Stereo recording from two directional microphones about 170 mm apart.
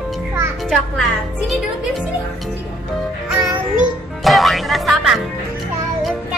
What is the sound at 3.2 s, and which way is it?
Music, 5° right (ahead or behind).